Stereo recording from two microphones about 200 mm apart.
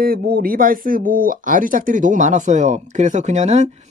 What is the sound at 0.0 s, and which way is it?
Speech, 50° right (ahead or behind).